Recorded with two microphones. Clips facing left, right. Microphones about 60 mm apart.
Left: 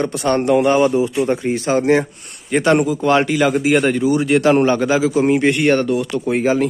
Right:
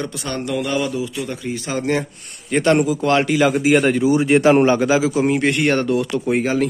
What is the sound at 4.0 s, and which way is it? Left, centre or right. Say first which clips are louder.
A man's voice: even; right.